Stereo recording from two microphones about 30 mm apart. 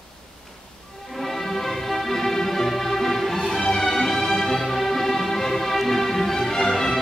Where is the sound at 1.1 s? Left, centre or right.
Centre.